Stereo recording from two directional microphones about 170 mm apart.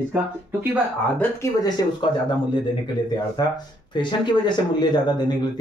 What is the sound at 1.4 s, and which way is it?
Speech, 20° left (ahead or behind).